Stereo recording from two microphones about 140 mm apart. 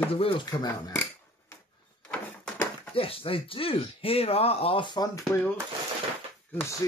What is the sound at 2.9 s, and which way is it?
Speech, 40° left (ahead or behind).